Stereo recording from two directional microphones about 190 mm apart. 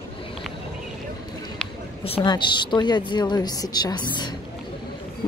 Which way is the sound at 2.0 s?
25° left (ahead or behind).